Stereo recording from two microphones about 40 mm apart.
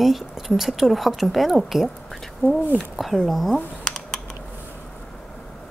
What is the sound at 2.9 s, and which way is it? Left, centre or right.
Speech, centre.